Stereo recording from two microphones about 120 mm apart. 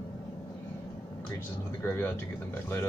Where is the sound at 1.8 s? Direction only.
20° left (ahead or behind).